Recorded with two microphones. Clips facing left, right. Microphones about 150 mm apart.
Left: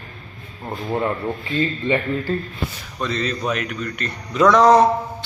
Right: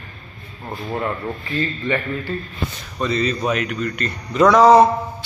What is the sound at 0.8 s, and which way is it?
Speech, 15° left (ahead or behind).